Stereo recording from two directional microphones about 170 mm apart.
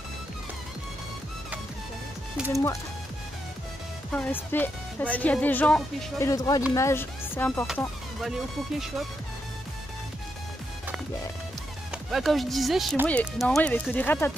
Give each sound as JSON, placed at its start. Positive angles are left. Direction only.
{"t": 2.5, "sound": "speech", "side_deg": 15}
{"t": 4.1, "sound": "speech", "side_deg": 10}
{"t": 7.6, "sound": "music", "side_deg": 0}
{"t": 11.9, "sound": "speech", "side_deg": 0}